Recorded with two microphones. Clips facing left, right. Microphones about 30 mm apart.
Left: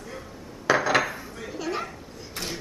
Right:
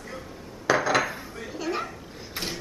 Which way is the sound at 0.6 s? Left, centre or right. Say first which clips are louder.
Left 1 dB; centre.